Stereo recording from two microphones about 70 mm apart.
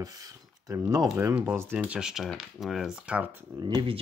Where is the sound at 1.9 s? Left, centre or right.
Centre.